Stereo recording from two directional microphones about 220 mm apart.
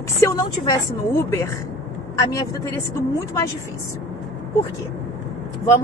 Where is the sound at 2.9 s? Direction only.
15° left (ahead or behind).